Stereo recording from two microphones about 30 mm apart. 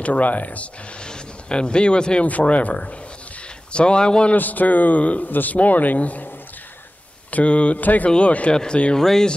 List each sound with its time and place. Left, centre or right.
0.0 s speech: left
1.0 s speech: left
2.2 s speech: left
3.7 s speech: left
4.4 s speech: left
7.8 s speech: left
8.2 s speech: left
8.9 s speech: centre